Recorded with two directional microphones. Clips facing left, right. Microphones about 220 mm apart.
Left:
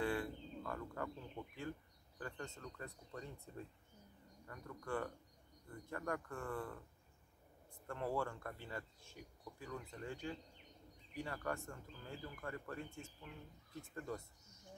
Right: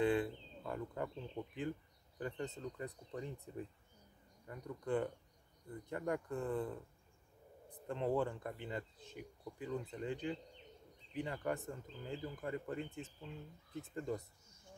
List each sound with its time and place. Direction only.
0.0 s speech: 20° right (ahead or behind)